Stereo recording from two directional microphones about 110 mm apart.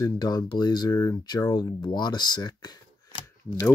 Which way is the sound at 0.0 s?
35° left (ahead or behind).